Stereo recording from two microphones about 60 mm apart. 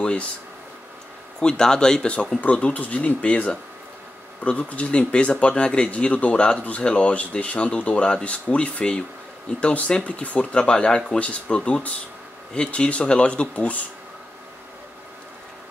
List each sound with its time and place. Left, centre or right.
0.0 s speech: centre
1.4 s speech: centre